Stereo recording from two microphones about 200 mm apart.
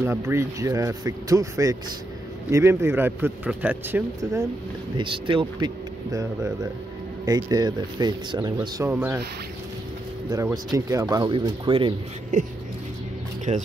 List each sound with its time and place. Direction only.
0.0 s speech: 15° right (ahead or behind)
4.9 s speech: 25° right (ahead or behind)
7.2 s speech: 20° right (ahead or behind)
8.7 s speech: 10° right (ahead or behind)
10.3 s speech: 20° right (ahead or behind)
12.3 s speech: 40° right (ahead or behind)